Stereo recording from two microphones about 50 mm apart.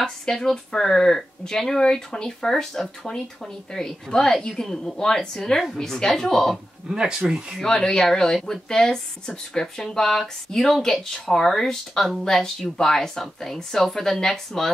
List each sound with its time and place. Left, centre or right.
0.0 s speech: centre
6.9 s speech: centre
7.6 s speech: centre